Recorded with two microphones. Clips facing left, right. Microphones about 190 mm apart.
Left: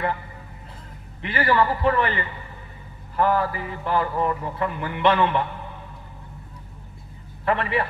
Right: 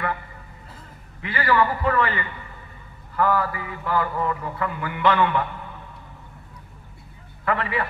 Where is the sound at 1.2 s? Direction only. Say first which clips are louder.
Even; 25° left (ahead or behind).